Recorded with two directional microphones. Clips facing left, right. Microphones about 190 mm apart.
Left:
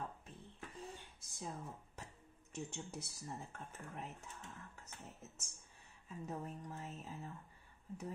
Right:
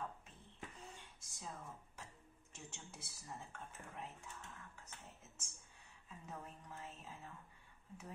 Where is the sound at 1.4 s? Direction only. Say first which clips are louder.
Left 4 dB; 40° left (ahead or behind).